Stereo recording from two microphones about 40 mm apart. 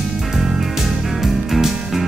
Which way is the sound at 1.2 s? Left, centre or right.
Centre.